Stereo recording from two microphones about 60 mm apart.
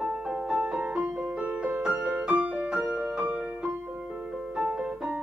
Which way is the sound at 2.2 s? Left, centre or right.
Centre.